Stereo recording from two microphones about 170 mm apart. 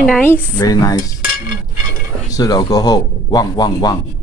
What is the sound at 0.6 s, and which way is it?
Speech, 20° left (ahead or behind).